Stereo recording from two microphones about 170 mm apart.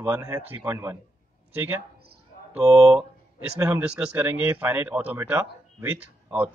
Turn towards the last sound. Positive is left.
turn(degrees=-10)  # may be behind; listen again after turning